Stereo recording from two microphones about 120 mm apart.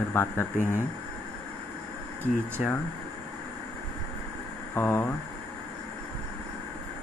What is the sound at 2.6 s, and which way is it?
Speech, 5° right (ahead or behind).